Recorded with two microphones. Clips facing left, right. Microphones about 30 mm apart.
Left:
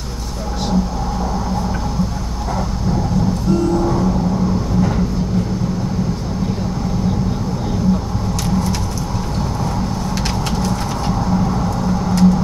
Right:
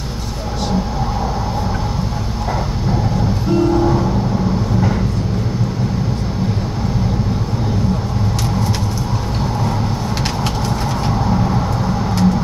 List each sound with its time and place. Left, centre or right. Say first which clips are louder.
3.4 s train: right 4 dB; right
11.1 s vehicle: even; centre